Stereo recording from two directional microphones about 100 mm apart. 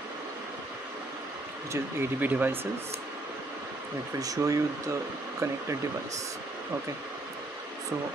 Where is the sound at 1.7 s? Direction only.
20° right (ahead or behind).